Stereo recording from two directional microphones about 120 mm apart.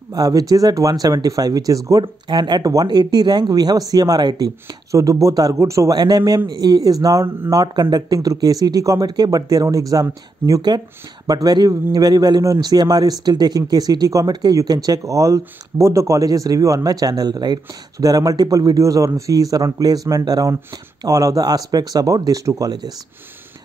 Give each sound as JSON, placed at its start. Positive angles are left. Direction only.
{"t": 0.1, "sound": "speech", "side_deg": -30}